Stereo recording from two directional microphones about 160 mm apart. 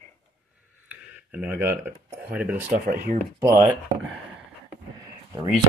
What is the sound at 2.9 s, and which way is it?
Speech, 55° right (ahead or behind).